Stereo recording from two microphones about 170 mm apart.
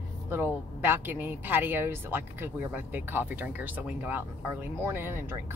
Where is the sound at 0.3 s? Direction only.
10° right (ahead or behind).